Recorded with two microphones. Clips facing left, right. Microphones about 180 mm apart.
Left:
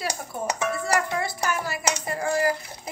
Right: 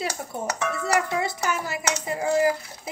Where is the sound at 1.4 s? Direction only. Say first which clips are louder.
Even; 20° right (ahead or behind).